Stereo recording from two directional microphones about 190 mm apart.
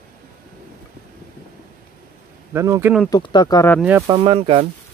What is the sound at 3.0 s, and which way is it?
Speech, 20° left (ahead or behind).